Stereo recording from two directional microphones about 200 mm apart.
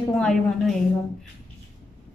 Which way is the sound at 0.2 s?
Centre (ahead or behind).